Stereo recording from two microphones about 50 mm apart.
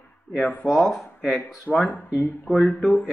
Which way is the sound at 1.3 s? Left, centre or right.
Left.